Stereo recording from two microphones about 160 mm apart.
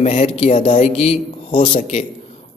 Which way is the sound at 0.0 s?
45° left (ahead or behind).